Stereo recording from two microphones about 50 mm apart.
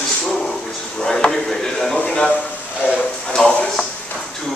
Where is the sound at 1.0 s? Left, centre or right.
Centre.